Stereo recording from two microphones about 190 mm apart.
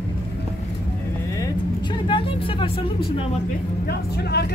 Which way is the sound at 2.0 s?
25° left (ahead or behind).